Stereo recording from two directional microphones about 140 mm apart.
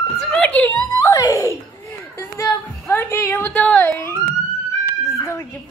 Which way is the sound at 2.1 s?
20° left (ahead or behind).